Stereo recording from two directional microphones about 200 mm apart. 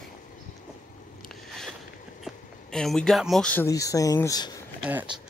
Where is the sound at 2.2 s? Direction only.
Centre (ahead or behind); by 4.5 s 20° left (ahead or behind).